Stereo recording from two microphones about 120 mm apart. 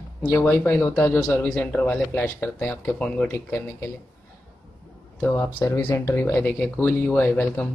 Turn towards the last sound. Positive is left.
turn(degrees=15)  # may be behind; listen again after turning